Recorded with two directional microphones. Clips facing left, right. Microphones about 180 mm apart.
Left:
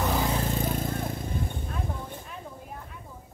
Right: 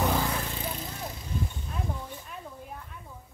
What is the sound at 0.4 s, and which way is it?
Vehicle, 45° left (ahead or behind).